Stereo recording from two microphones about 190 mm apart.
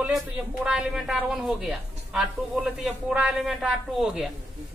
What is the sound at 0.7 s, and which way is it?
A woman's voice, 5° right (ahead or behind).